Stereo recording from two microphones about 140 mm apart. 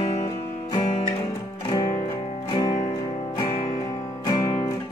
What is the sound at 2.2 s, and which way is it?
Music, 40° left (ahead or behind).